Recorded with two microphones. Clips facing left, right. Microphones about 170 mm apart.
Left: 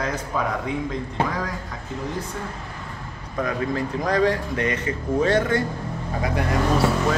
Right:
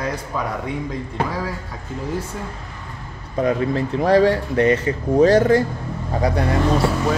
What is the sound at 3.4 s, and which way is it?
Speech, 30° right (ahead or behind).